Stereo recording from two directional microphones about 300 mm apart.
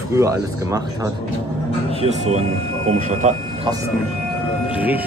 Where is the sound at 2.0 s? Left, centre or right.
Right.